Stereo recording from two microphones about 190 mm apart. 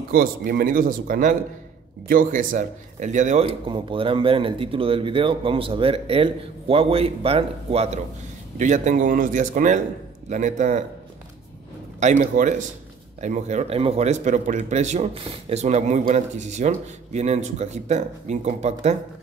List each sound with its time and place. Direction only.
0.1 s speech: 50° right (ahead or behind)
12.0 s speech: 40° right (ahead or behind)